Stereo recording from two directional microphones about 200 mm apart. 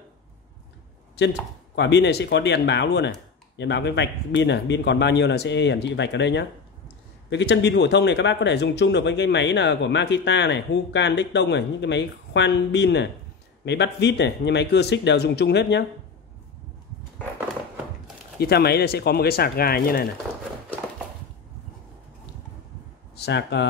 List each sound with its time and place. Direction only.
1.2 s speech: 55° left (ahead or behind)
18.4 s speech: 50° left (ahead or behind)
23.1 s speech: 55° left (ahead or behind)